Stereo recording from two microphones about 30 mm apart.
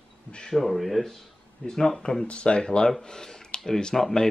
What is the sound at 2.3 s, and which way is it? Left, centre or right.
Speech, left.